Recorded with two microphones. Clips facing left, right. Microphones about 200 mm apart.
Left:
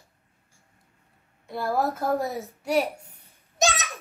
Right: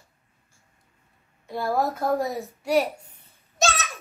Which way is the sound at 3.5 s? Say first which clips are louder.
Even; 15° left (ahead or behind).